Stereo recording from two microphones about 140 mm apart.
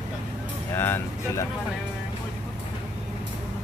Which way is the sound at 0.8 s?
15° left (ahead or behind).